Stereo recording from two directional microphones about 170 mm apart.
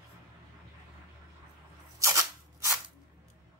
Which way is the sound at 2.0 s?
20° right (ahead or behind).